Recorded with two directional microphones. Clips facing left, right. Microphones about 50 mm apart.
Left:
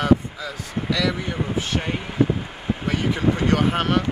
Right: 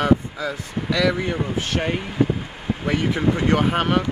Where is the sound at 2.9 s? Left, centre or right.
Right.